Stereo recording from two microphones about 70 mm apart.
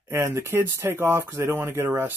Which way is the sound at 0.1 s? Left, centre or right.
Right.